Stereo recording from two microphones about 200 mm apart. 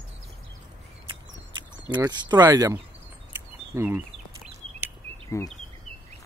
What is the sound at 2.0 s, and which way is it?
Speech, 20° right (ahead or behind).